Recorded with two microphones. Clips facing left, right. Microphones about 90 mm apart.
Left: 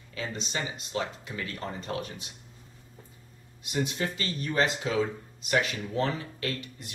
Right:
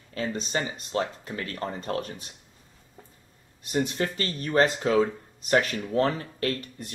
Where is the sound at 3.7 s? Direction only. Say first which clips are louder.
Right 4 dB; 45° right (ahead or behind).